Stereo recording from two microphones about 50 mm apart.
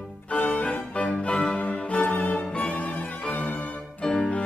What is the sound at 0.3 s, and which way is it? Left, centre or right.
Music, left.